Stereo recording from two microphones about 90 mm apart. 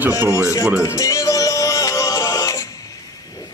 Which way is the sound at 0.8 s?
40° left (ahead or behind).